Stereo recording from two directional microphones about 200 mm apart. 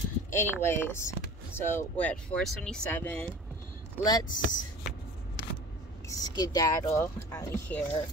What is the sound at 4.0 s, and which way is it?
Speech, 20° left (ahead or behind).